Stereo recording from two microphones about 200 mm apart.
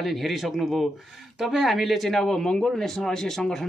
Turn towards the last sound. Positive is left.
turn(degrees=0)  # may be behind; listen again after turning